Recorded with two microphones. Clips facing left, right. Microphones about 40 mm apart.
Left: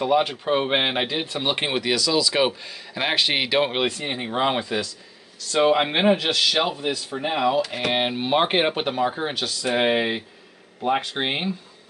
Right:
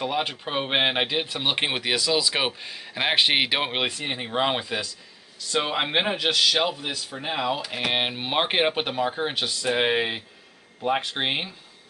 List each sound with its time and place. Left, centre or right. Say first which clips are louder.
0.0 s speech: left 6 dB; centre
9.3 s speech: even; centre
9.6 s speech: left 2 dB; centre